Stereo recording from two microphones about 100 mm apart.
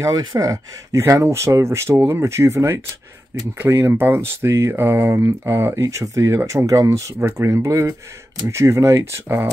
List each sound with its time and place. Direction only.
0.0 s speech: 40° right (ahead or behind)